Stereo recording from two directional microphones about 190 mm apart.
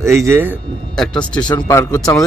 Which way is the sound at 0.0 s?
15° right (ahead or behind).